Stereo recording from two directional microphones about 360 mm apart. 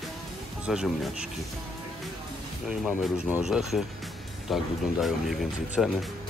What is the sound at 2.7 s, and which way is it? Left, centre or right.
Speech, centre.